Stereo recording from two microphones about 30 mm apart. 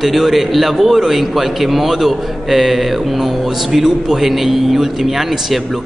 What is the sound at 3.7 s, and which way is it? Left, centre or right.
A man's voice, centre.